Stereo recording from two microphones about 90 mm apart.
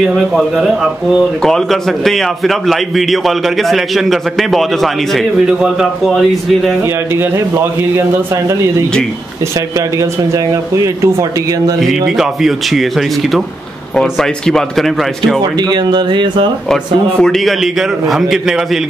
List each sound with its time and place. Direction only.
1.4 s a man's voice: 5° left (ahead or behind)
7.9 s speech: 30° right (ahead or behind)
11.8 s a man's voice: centre (ahead or behind)
13.9 s a man's voice: 5° left (ahead or behind)
15.7 s speech: 55° right (ahead or behind)
17.2 s a man's voice: 5° left (ahead or behind)